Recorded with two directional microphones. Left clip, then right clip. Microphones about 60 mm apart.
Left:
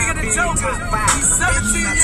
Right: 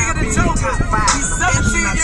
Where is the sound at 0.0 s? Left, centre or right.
Right.